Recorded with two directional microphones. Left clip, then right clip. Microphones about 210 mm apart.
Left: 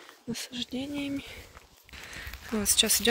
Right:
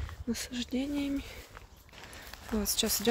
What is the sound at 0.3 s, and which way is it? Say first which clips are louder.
Speech: even; 25° right (ahead or behind).